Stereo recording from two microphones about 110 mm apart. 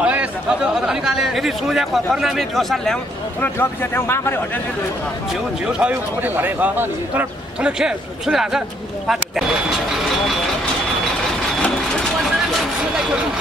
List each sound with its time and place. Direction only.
0.0 s speech: 10° right (ahead or behind)
3.3 s a man's voice: 20° left (ahead or behind)
5.7 s a man's voice: 10° right (ahead or behind)
7.8 s speech: 5° right (ahead or behind)
11.6 s vehicle: 10° left (ahead or behind)